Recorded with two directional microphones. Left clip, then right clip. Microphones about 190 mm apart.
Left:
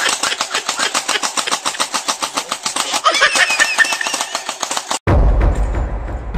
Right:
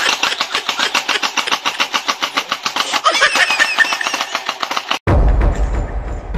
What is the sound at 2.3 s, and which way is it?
Vehicle, 15° left (ahead or behind).